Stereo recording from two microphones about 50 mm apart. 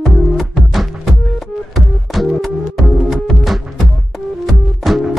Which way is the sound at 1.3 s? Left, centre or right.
Centre.